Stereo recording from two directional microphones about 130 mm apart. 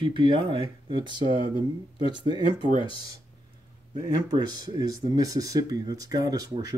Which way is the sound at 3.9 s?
35° right (ahead or behind).